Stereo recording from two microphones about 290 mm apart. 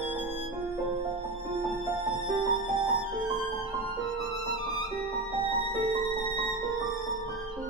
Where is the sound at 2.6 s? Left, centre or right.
Right.